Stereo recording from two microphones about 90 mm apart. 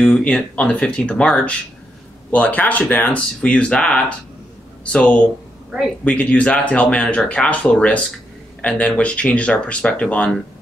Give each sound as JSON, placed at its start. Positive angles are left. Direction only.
{"t": 0.0, "sound": "speech", "side_deg": 15}
{"t": 6.0, "sound": "speech", "side_deg": 15}